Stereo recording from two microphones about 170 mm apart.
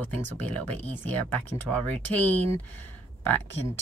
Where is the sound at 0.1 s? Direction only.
10° left (ahead or behind).